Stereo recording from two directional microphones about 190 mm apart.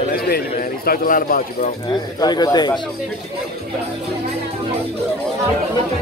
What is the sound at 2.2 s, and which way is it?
Speech, 20° left (ahead or behind).